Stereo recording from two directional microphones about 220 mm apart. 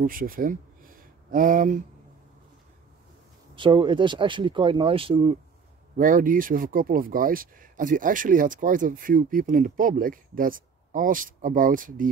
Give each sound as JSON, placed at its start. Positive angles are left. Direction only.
{"t": 0.0, "sound": "speech", "side_deg": -40}
{"t": 3.5, "sound": "speech", "side_deg": -20}
{"t": 5.9, "sound": "speech", "side_deg": -40}